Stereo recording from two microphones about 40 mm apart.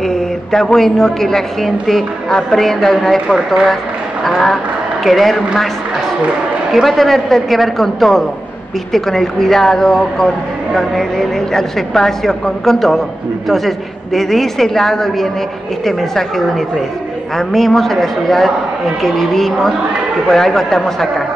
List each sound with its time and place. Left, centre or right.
0.0 s a woman's voice: centre
6.7 s a woman's voice: centre